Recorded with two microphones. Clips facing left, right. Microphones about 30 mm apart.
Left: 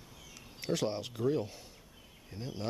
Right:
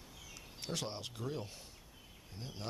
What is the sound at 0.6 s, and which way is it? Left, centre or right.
Speech, centre.